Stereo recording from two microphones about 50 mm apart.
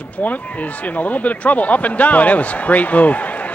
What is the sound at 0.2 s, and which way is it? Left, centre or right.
Speech, left.